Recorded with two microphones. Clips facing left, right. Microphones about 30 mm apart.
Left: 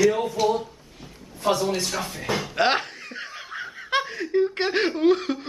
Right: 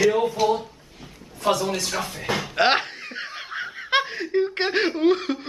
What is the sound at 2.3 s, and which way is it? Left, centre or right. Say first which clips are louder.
Laughter: right 2 dB; centre.